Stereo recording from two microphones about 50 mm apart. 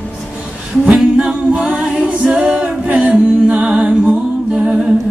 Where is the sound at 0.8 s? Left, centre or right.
Right.